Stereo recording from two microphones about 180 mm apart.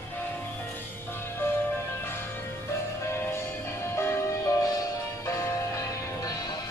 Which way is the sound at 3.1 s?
15° left (ahead or behind).